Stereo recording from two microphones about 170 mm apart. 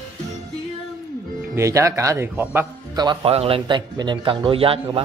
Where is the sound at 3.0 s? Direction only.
30° right (ahead or behind).